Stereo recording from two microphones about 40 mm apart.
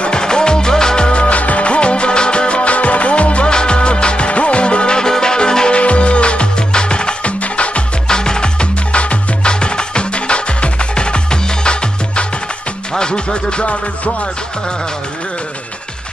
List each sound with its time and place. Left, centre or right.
0.0 s music: left
5.8 s music: left
8.1 s music: centre